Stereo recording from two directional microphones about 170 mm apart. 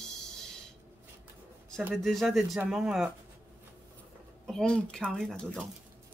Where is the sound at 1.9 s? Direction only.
Centre (ahead or behind).